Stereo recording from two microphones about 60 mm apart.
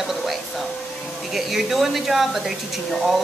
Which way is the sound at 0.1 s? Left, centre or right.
Centre.